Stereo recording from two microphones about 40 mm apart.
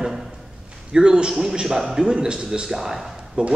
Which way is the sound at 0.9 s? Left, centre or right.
Right.